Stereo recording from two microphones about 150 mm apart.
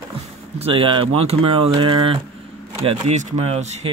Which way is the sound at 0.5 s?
40° right (ahead or behind).